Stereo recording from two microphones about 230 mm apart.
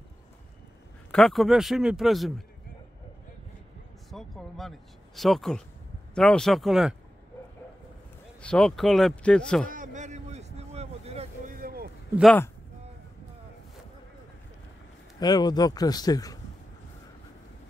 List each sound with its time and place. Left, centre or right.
1.1 s speech: centre
4.1 s speech: centre
8.4 s speech: centre
9.7 s vehicle: right
11.6 s a sound: right
15.1 s speech: centre